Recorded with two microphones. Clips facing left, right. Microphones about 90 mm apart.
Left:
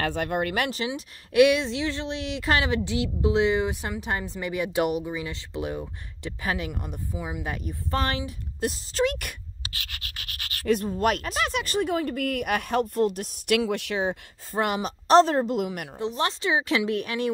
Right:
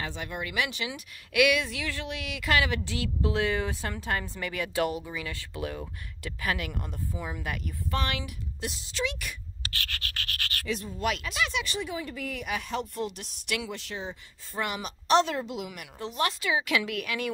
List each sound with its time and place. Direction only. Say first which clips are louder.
0.0 s speech: left 9 dB; 55° left (ahead or behind)
0.7 s speech: left 6 dB; 35° left (ahead or behind)
7.9 s a woman's voice: left 4 dB; 35° left (ahead or behind); by 9.4 s 50° left (ahead or behind)
9.7 s scratch: right 3 dB; 20° left (ahead or behind)
10.7 s speech: left 8 dB; 50° left (ahead or behind); by 14.1 s 70° left (ahead or behind)
14.5 s a woman's voice: left 7 dB; 45° left (ahead or behind)
16.0 s speech: left 3 dB; 25° left (ahead or behind)